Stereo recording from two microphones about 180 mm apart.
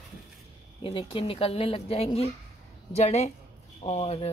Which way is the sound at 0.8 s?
30° left (ahead or behind).